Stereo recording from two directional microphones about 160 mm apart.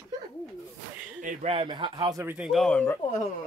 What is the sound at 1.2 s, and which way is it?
Speech, 55° right (ahead or behind).